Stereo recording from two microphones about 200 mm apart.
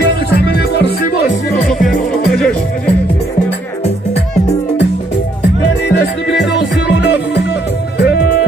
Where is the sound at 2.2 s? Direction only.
5° left (ahead or behind).